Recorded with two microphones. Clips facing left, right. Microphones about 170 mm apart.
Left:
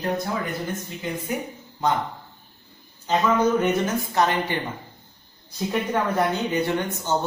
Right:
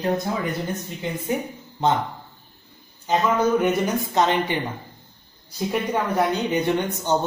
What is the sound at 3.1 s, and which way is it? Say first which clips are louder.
Speech: even; 15° right (ahead or behind).